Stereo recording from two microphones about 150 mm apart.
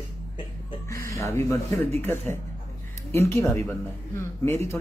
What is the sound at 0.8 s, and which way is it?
Speech, 20° left (ahead or behind).